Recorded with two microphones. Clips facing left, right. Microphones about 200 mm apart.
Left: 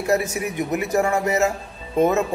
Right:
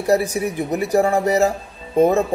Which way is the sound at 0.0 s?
35° right (ahead or behind).